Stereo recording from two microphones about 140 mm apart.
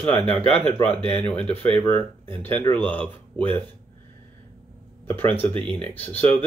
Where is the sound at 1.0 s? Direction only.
40° right (ahead or behind).